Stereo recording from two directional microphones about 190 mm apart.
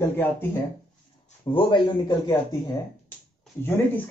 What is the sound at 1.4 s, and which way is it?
Speech, 25° left (ahead or behind).